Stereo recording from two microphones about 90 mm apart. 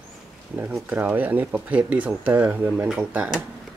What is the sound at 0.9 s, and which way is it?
Speech, 20° right (ahead or behind).